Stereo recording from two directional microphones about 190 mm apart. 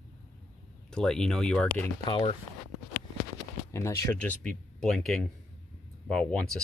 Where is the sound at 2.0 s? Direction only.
25° left (ahead or behind).